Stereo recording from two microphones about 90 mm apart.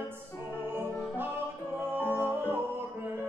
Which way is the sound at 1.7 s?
25° left (ahead or behind).